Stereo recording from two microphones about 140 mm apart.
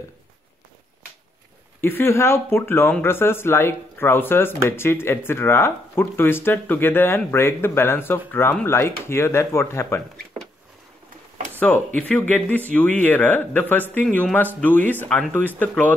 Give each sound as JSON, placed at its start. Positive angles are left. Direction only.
{"t": 1.8, "sound": "speech", "side_deg": 15}
{"t": 11.6, "sound": "speech", "side_deg": 10}